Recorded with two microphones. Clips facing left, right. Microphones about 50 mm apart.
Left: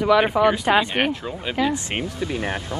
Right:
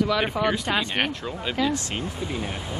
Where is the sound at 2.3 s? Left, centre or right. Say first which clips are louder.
Left 5 dB; left.